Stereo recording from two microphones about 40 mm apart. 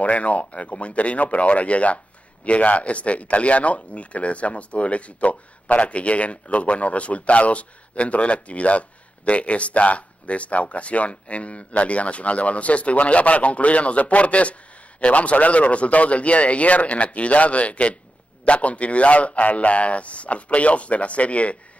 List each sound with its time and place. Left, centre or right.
0.0 s speech: left